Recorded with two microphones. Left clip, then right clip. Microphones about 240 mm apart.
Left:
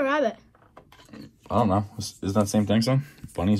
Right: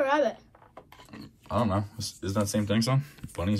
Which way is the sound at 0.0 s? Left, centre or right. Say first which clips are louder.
Left 1 dB; left.